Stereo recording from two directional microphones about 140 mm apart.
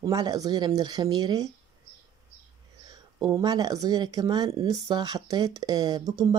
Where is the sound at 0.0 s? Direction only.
25° right (ahead or behind).